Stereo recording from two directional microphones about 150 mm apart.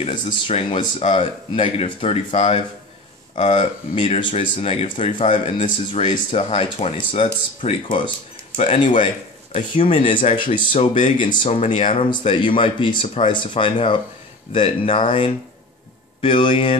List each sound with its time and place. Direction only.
0.1 s speech: 35° left (ahead or behind)
10.7 s speech: 45° left (ahead or behind)